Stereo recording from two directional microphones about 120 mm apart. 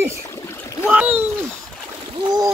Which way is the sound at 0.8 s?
15° right (ahead or behind).